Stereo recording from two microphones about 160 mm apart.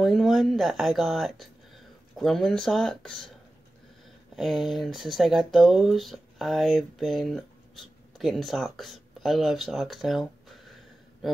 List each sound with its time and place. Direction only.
0.0 s speech: centre (ahead or behind)
4.4 s speech: centre (ahead or behind)